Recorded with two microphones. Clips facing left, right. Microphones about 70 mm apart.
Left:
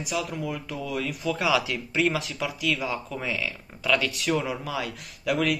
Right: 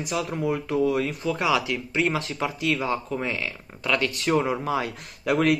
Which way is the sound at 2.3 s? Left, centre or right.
Right.